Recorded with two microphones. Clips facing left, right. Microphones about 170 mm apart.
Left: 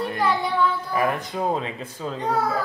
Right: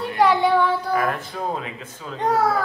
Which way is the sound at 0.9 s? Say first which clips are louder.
Even; 15° left (ahead or behind).